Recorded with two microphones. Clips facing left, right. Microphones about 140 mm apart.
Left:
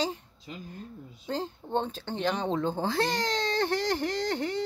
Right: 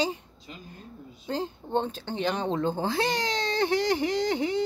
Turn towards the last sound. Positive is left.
turn(degrees=0)  # may be behind; listen again after turning